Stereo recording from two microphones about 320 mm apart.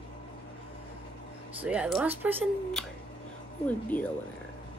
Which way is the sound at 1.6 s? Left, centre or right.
Centre.